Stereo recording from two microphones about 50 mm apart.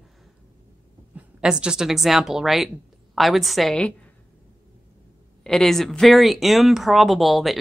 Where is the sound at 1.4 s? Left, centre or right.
Centre.